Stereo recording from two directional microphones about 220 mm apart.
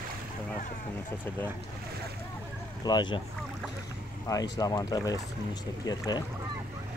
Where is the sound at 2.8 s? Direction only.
20° left (ahead or behind).